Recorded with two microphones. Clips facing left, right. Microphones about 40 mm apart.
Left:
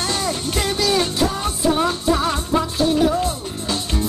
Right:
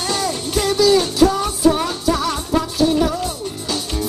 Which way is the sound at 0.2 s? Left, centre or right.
Left.